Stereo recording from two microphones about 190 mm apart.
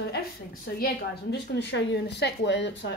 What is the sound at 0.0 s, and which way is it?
A woman's voice, 55° left (ahead or behind).